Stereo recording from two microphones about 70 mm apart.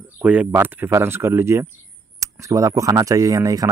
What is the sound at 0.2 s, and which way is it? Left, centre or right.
Speech, right.